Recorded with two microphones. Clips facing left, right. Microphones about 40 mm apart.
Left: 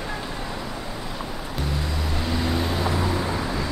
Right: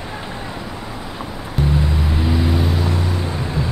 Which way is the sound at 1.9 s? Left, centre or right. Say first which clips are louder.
Right 6 dB; right.